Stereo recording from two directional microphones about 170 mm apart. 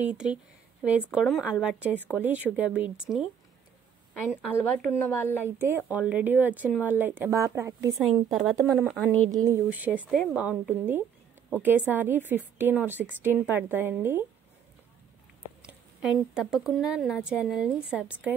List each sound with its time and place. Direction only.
0.0 s a woman's voice: 5° right (ahead or behind)
4.3 s speech: 10° right (ahead or behind)
4.8 s a woman's voice: 15° left (ahead or behind)
5.6 s speech: 10° right (ahead or behind)
8.0 s a woman's voice: centre (ahead or behind)
9.4 s speech: 10° right (ahead or behind)
15.6 s a woman's voice: 5° right (ahead or behind)